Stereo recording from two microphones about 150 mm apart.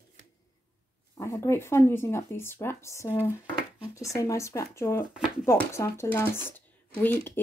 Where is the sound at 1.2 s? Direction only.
20° left (ahead or behind).